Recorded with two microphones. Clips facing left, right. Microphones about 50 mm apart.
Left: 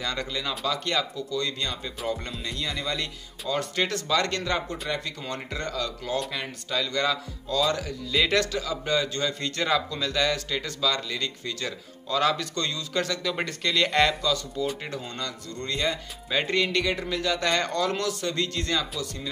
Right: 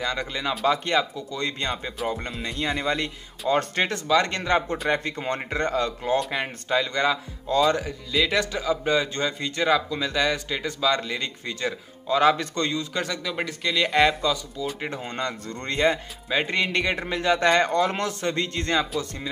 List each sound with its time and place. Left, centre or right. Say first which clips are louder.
0.0 s a man's voice: right 3 dB; centre
2.6 s a man's voice: right 6 dB; right
8.1 s speech: even; centre
8.4 s a man's voice: right 2 dB; centre
9.4 s a man's voice: right 4 dB; centre
13.3 s speech: right 1 dB; centre
14.8 s speech: right 4 dB; right
16.3 s speech: right 1 dB; centre
16.7 s a man's voice: right 1 dB; right